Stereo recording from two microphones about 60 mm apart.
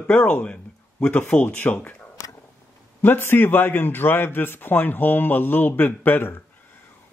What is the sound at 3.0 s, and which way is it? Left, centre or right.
A man's voice, left.